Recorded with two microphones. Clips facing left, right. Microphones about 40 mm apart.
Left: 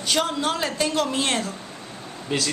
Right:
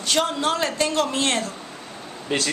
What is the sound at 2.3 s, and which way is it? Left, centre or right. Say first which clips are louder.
Speech: right 1 dB; centre.